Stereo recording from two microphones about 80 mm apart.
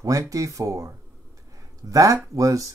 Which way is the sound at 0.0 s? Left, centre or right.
Right.